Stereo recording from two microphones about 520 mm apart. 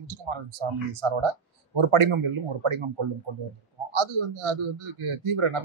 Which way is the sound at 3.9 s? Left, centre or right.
Right.